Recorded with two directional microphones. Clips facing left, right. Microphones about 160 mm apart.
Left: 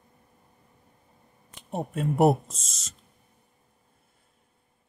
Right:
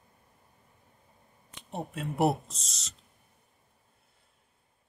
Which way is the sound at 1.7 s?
45° left (ahead or behind).